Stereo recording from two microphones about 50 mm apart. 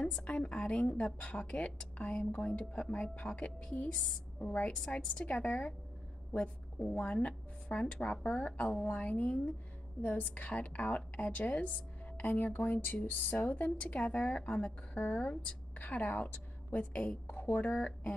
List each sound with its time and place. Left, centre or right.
0.0 s a woman's voice: left